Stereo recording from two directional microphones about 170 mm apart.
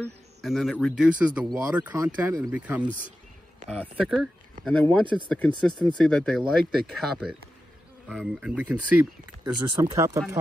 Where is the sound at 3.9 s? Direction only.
Centre (ahead or behind).